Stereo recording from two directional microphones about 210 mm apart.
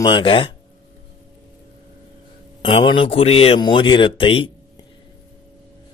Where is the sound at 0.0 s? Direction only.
25° left (ahead or behind).